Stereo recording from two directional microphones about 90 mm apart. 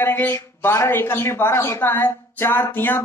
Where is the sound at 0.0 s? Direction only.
25° left (ahead or behind).